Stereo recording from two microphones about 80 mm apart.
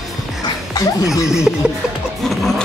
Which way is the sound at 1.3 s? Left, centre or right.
Centre.